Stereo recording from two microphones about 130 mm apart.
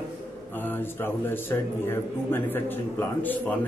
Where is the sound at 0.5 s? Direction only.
15° left (ahead or behind).